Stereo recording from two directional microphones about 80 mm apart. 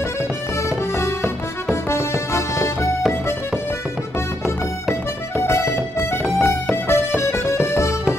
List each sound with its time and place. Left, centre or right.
0.7 s music: left
1.9 s accordion: left
5.4 s music: left